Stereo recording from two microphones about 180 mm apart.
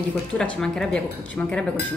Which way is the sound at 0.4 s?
5° left (ahead or behind).